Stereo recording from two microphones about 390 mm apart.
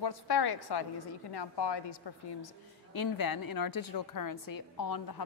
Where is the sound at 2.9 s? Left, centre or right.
Left.